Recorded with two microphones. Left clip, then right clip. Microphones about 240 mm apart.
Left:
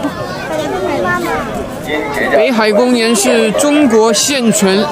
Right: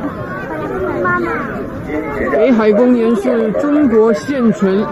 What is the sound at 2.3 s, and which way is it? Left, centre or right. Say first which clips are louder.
Speech: left 1 dB; centre.